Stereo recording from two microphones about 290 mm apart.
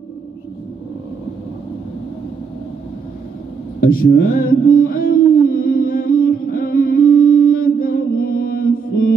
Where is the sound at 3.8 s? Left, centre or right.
Left.